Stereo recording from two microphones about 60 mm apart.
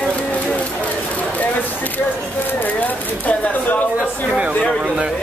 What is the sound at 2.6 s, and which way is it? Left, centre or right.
Speech, left.